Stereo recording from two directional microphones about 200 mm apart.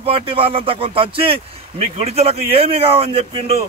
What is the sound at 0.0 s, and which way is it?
A man's voice, 25° right (ahead or behind).